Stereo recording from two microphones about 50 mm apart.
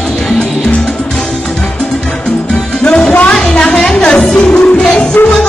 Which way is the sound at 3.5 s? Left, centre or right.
Centre.